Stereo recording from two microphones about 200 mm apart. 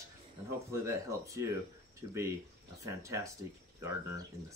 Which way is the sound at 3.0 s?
15° right (ahead or behind).